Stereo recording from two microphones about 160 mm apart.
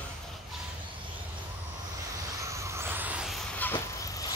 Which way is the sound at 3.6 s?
10° left (ahead or behind).